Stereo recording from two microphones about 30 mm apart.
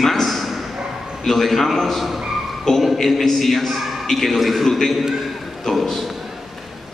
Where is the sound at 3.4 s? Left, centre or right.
Centre.